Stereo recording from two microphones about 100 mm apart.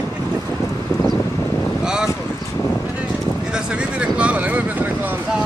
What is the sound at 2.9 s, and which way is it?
Vehicle, 10° right (ahead or behind).